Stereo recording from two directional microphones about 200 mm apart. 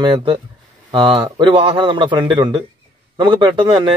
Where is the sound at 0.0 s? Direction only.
25° right (ahead or behind).